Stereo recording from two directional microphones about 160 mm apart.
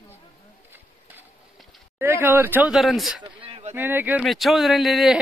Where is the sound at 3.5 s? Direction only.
40° right (ahead or behind).